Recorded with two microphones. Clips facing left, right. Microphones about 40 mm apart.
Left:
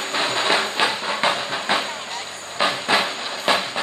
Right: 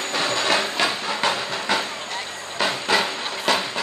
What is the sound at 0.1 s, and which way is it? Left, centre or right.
Train, left.